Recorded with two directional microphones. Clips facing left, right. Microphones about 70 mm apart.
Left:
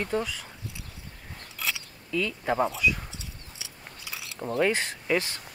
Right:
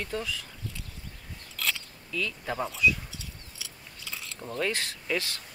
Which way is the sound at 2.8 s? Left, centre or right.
Left.